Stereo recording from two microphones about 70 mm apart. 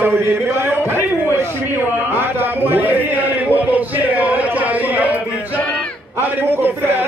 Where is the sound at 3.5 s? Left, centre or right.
Right.